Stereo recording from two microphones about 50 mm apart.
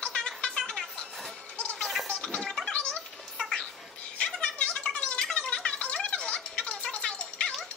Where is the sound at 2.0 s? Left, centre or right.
Centre.